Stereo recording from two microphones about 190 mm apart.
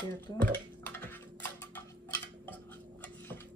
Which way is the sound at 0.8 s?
10° left (ahead or behind).